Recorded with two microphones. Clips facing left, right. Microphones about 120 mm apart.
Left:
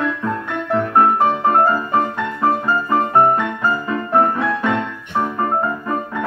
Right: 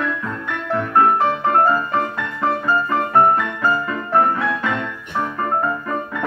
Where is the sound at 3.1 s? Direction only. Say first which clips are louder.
Right 1 dB; 20° left (ahead or behind).